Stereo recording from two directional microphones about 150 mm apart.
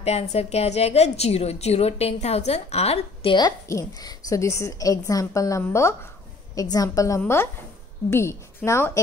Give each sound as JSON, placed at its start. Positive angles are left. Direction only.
{"t": 0.0, "sound": "a woman's voice", "side_deg": 45}